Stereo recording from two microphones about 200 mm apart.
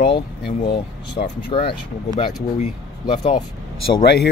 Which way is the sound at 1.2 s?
40° left (ahead or behind).